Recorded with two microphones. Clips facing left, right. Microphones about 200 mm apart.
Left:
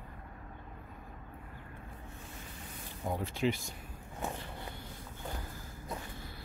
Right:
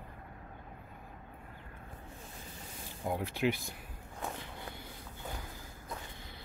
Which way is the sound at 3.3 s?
60° right (ahead or behind).